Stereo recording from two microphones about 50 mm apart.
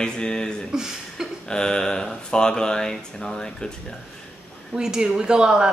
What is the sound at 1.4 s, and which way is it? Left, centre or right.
Speech, centre.